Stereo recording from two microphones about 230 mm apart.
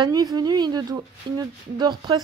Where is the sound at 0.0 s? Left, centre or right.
Centre.